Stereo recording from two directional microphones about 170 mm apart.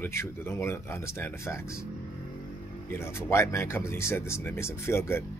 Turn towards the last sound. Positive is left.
turn(degrees=15)  # may be behind; listen again after turning